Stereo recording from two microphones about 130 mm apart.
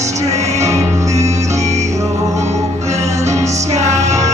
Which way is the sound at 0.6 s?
25° right (ahead or behind).